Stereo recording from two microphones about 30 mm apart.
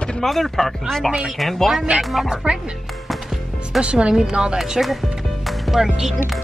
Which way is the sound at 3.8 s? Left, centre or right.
Right.